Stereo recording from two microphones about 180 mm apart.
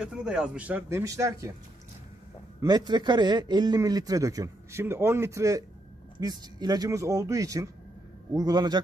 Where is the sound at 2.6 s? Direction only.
20° right (ahead or behind).